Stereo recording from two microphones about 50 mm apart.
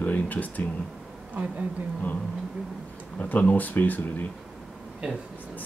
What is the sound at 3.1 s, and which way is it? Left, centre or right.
Speech, left.